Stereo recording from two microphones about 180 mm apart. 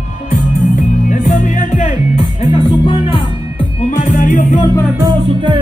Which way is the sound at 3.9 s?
45° left (ahead or behind).